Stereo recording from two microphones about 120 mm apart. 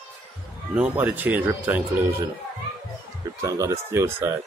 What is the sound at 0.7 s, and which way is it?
Speech, 15° right (ahead or behind).